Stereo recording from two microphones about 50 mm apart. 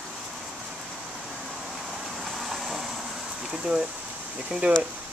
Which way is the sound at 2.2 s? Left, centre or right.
Centre.